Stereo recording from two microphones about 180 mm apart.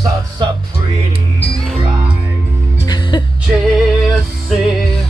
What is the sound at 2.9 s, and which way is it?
Music, 25° left (ahead or behind).